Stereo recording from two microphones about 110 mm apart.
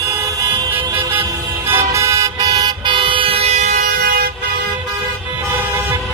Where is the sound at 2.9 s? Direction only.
50° right (ahead or behind); by 3.8 s 85° right.